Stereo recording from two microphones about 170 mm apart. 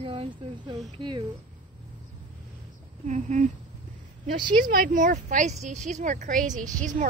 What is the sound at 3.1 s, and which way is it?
Speech, 45° right (ahead or behind).